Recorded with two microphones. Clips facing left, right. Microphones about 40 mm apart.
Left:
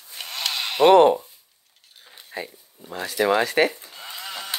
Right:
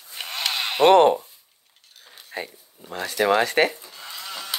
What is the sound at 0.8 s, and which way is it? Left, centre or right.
Speech, right.